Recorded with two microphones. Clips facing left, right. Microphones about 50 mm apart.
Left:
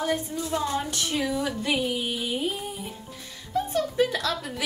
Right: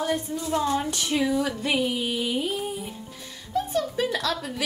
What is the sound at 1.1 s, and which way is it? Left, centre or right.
Female singing, centre.